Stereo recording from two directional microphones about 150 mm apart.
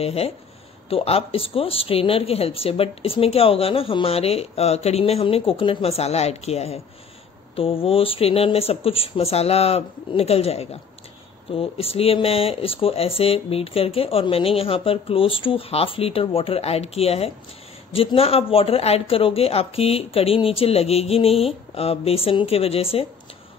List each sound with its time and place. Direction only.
0.0 s a woman's voice: 40° left (ahead or behind)